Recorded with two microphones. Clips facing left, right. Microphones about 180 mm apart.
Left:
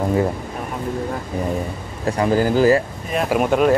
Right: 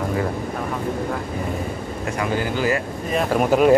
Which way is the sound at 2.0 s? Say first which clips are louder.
Left 6 dB; 35° left (ahead or behind).